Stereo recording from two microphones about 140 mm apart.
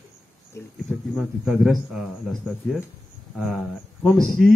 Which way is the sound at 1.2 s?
Centre (ahead or behind).